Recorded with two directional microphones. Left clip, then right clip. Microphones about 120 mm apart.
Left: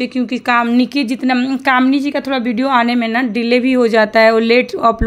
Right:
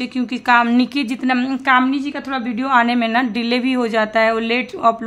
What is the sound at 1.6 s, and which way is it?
A woman's voice, 40° left (ahead or behind).